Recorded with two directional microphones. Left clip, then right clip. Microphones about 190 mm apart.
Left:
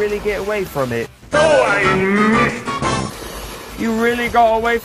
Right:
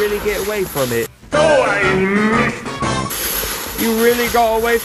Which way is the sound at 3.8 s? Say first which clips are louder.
Right 3 dB; 20° right (ahead or behind).